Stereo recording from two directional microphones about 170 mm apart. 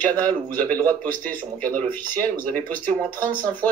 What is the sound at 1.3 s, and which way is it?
Speech, 10° left (ahead or behind).